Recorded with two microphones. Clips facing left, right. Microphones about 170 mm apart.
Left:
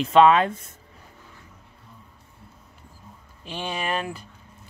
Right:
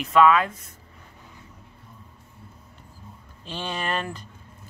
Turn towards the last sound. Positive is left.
turn(degrees=10)  # may be behind; listen again after turning